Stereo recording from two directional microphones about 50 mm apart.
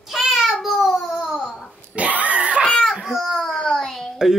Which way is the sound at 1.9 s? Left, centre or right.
Right.